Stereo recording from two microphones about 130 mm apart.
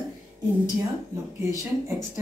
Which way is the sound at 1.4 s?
20° right (ahead or behind).